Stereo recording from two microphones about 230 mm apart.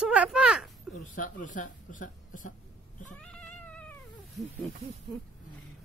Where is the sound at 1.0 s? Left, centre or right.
Left.